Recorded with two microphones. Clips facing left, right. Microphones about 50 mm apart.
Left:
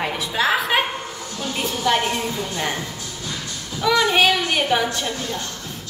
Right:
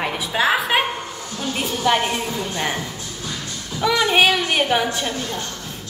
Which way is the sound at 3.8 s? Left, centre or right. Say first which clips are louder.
Even; centre.